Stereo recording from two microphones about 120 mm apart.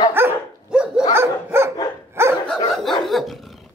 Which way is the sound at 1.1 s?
20° right (ahead or behind).